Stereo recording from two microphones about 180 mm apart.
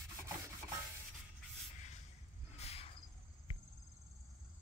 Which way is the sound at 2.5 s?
35° left (ahead or behind).